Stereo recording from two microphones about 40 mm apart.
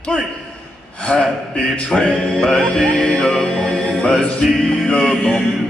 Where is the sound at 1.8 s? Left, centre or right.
Centre.